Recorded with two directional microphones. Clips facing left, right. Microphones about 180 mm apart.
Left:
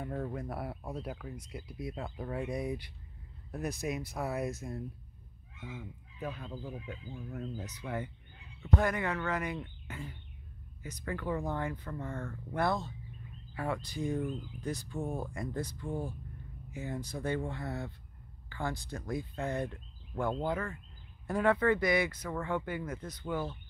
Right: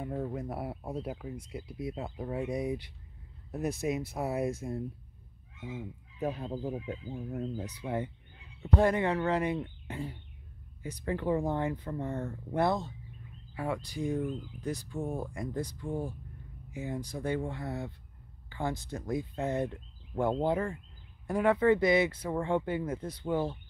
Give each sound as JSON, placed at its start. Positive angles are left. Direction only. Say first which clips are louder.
{"t": 0.0, "sound": "speech", "louder": "right 2 dB", "side_deg": -15}
{"t": 6.1, "sound": "speech", "louder": "right 6 dB", "side_deg": -40}
{"t": 21.3, "sound": "speech", "louder": "right 3 dB", "side_deg": -15}